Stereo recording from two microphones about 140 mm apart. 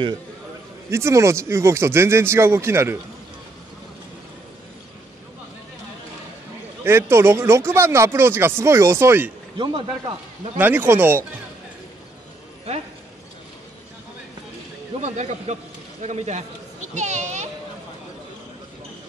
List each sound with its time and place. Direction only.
0.8 s speech: 20° right (ahead or behind)
6.8 s speech: 15° right (ahead or behind)
9.6 s speech: 35° right (ahead or behind)
10.6 s speech: 15° right (ahead or behind)
15.0 s a child's voice: 55° right (ahead or behind)